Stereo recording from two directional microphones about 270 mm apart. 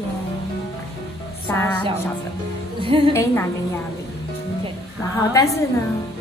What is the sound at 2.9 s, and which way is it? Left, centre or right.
Speech, centre.